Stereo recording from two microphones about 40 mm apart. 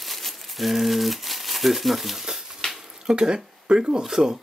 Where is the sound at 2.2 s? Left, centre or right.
Centre.